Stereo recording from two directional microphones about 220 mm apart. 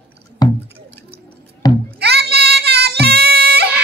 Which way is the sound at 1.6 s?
20° left (ahead or behind).